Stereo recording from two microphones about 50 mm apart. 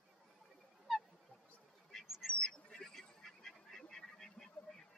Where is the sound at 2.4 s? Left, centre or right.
Centre.